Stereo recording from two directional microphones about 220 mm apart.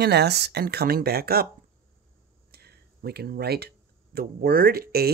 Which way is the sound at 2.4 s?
45° right (ahead or behind).